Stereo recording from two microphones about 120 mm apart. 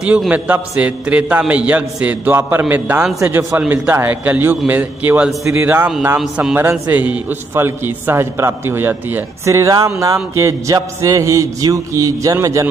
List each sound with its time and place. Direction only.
0.3 s a man's voice: 10° right (ahead or behind)
6.1 s a man's voice: 5° right (ahead or behind)
6.5 s a man's voice: 20° right (ahead or behind)